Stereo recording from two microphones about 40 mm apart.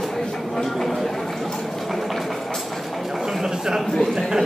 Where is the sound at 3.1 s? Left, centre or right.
Centre.